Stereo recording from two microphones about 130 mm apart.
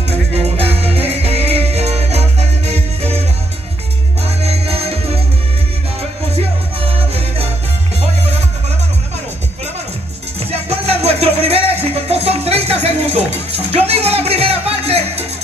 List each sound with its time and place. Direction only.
0.6 s music: 50° right (ahead or behind)
4.4 s music: 50° right (ahead or behind)
6.3 s music: 50° right (ahead or behind)
10.7 s music: 50° right (ahead or behind)